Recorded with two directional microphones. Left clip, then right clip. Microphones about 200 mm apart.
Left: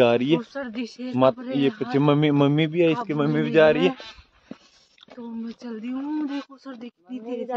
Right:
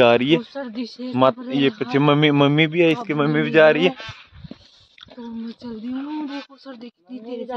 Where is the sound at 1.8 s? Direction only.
15° right (ahead or behind).